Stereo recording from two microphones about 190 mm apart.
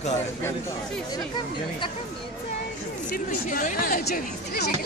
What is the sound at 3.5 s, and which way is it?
Speech, 45° left (ahead or behind).